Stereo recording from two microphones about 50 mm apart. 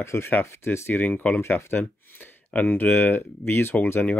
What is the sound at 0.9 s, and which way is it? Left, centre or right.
Speech, left.